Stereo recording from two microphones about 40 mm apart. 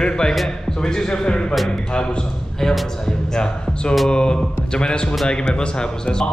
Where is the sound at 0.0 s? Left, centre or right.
Left.